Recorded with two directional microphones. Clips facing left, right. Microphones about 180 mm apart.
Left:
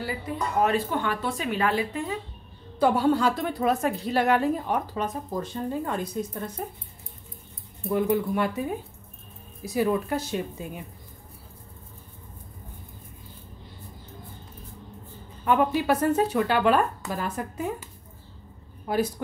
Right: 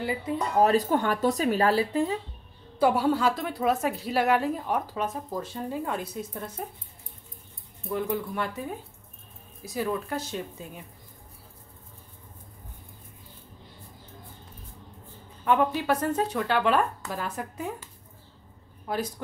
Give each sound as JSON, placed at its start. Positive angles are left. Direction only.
{"t": 0.0, "sound": "speech", "side_deg": -20}
{"t": 0.6, "sound": "speech", "side_deg": -40}
{"t": 2.8, "sound": "a woman's voice", "side_deg": -5}
{"t": 7.9, "sound": "speech", "side_deg": 10}
{"t": 15.4, "sound": "a woman's voice", "side_deg": 5}
{"t": 18.9, "sound": "speech", "side_deg": 5}